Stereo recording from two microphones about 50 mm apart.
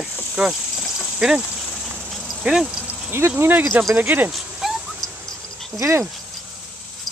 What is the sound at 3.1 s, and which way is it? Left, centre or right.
Speech, right.